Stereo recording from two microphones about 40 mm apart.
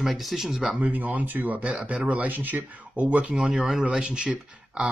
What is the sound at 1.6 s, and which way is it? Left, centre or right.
Speech, right.